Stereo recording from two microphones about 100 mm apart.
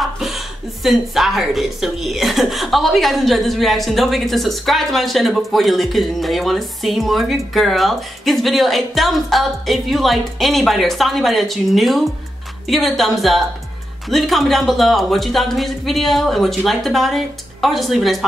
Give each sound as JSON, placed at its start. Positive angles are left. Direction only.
{"t": 0.0, "sound": "chuckle", "side_deg": 0}
{"t": 0.8, "sound": "speech", "side_deg": 0}